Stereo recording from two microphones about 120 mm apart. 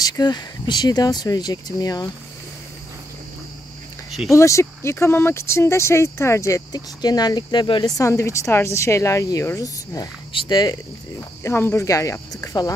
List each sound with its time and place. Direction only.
0.0 s speech: 35° left (ahead or behind)
4.3 s speech: 25° left (ahead or behind); by 7.9 s 40° left (ahead or behind)
8.0 s speech: 25° left (ahead or behind)
11.4 s speech: 20° left (ahead or behind)